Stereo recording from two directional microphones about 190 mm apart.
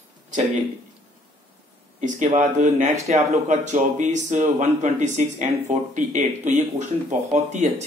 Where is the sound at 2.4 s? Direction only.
40° right (ahead or behind).